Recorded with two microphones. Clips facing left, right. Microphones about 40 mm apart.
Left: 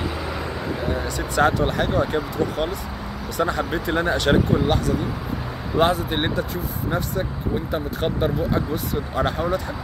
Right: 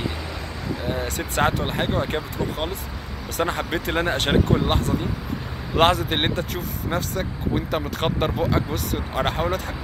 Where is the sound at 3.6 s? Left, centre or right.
Right.